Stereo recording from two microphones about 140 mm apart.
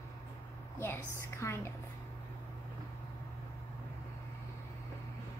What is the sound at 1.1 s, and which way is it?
Speech, 20° left (ahead or behind).